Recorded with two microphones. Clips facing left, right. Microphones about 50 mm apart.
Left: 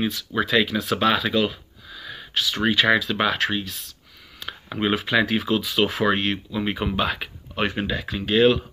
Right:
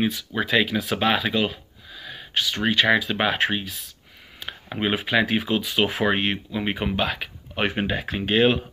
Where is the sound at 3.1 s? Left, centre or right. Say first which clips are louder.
Even; centre.